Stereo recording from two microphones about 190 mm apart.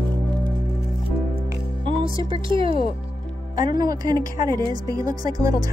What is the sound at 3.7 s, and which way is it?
Speech, 20° right (ahead or behind).